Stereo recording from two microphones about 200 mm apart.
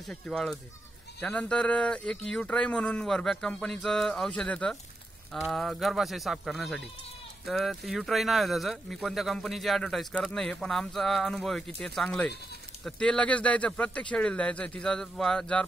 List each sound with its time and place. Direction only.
0.0 s speech: centre (ahead or behind)